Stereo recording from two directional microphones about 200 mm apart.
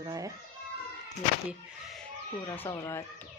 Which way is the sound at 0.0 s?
15° right (ahead or behind).